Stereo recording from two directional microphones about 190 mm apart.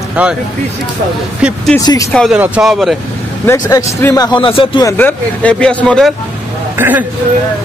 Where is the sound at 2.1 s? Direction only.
5° left (ahead or behind).